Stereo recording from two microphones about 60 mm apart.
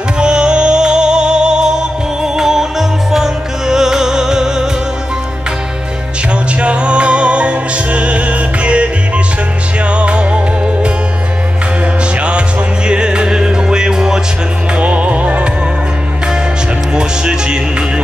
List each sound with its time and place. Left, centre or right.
0.2 s music: centre
6.6 s music: centre
12.2 s music: centre
16.9 s music: centre